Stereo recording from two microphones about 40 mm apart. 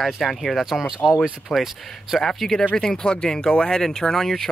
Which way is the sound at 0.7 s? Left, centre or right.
Centre.